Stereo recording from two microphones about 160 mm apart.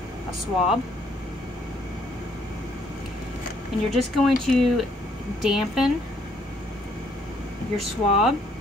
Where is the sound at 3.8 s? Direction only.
Centre (ahead or behind).